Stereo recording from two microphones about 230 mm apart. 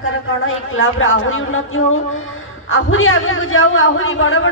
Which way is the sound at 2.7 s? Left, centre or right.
Left.